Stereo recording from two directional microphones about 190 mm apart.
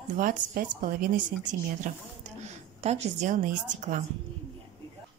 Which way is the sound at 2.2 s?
35° right (ahead or behind).